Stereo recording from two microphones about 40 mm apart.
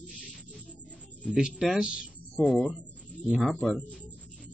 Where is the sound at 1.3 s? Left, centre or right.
Centre.